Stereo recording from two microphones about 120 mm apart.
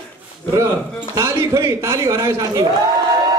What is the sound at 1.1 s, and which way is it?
A man's voice, 25° right (ahead or behind).